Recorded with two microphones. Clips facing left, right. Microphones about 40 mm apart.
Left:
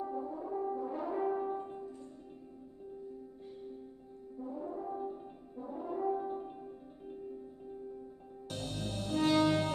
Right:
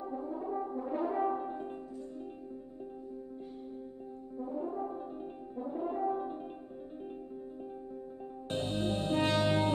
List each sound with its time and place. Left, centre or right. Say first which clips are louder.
0.0 s french horn: right 1 dB; centre
0.7 s brass instrument: right 3 dB; right
4.4 s brass instrument: right 4 dB; centre
8.5 s music: right 7 dB; right